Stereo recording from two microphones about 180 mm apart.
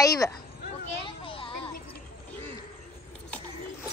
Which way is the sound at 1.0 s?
30° left (ahead or behind).